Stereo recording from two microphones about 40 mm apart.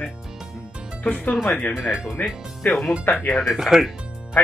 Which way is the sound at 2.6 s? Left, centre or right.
Left.